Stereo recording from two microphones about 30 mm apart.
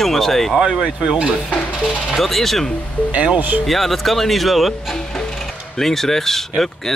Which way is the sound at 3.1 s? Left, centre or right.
Right.